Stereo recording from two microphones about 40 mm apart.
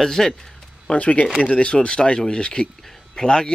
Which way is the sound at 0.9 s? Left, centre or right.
Left.